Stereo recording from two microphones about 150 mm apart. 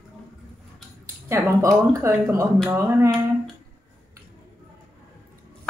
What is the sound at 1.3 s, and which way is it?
Speech, 20° right (ahead or behind).